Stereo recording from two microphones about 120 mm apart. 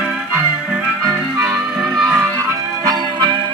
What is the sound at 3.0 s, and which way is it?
Music, 40° right (ahead or behind).